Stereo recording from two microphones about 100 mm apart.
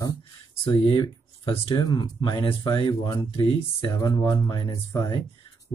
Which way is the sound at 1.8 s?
45° left (ahead or behind).